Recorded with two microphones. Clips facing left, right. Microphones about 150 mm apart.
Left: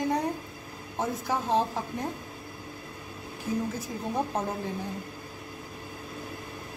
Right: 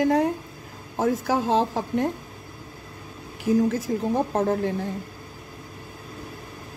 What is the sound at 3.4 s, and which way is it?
A woman's voice, 90° right.